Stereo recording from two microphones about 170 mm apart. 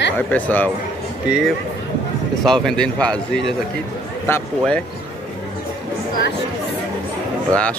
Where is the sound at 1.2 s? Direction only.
5° right (ahead or behind).